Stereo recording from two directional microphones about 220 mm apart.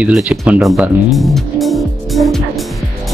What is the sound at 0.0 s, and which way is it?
Speech, 5° right (ahead or behind).